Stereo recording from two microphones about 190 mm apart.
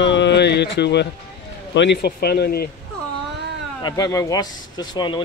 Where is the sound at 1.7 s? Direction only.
65° left (ahead or behind).